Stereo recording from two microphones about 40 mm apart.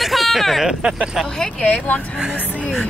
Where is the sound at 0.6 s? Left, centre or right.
Centre.